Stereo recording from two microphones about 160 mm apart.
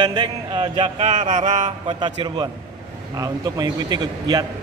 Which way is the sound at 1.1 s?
50° right (ahead or behind).